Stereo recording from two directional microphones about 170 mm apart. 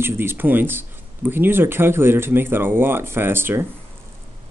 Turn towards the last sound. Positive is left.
turn(degrees=-15)  # may be behind; listen again after turning